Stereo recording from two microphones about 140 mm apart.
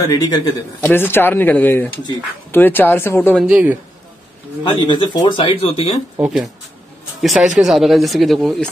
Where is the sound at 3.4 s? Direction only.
10° right (ahead or behind).